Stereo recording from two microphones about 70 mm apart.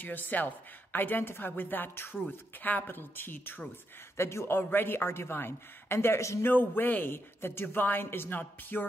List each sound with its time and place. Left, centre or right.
0.0 s a woman's voice: left
4.2 s a woman's voice: left
6.4 s a woman's voice: left